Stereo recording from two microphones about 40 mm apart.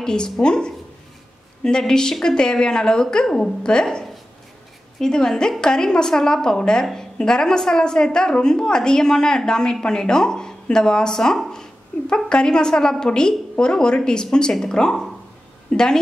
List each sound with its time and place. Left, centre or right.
0.0 s a woman's voice: left
11.5 s a sound: centre
12.3 s a woman's voice: left
15.7 s a woman's voice: centre